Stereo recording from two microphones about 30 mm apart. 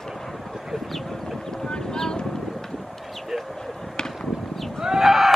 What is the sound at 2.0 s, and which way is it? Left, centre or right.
Vehicle, left.